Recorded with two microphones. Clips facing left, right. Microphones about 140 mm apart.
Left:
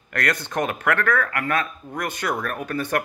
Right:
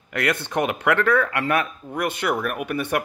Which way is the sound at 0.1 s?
20° right (ahead or behind).